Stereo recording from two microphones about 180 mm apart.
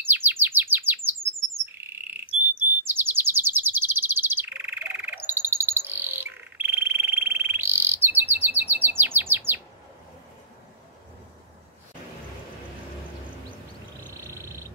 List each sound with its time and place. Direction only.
0.0 s bird: 10° right (ahead or behind)
2.8 s chirp: 10° right (ahead or behind)
14.3 s a sound: 15° right (ahead or behind)